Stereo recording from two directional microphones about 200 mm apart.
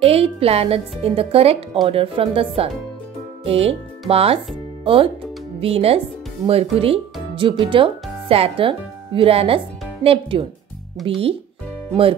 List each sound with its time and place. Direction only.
0.0 s a child's voice: 30° right (ahead or behind)